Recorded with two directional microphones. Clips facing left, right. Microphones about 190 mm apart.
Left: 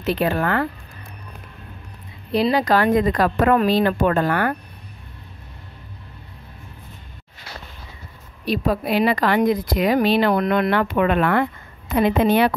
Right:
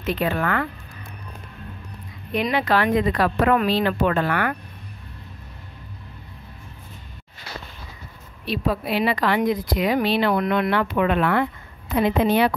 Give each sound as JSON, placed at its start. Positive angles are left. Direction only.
{"t": 0.0, "sound": "speech", "side_deg": 40}
{"t": 2.3, "sound": "speech", "side_deg": 35}
{"t": 8.5, "sound": "a woman's voice", "side_deg": 45}